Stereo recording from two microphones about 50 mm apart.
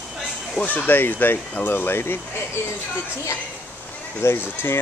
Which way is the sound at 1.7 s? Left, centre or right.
Left.